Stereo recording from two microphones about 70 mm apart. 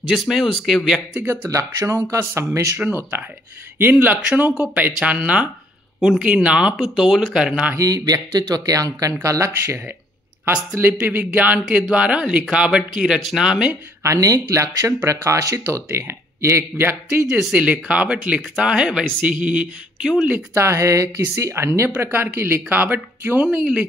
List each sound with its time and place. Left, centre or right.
0.1 s speech: centre
1.5 s speech: right
3.9 s speech: right
5.9 s speech: centre
6.2 s speech: centre
6.8 s speech: centre
7.7 s speech: right
9.2 s speech: right
10.4 s speech: right; by 13.7 s centre
14.0 s speech: right
17.3 s speech: centre
20.5 s speech: right
23.4 s speech: centre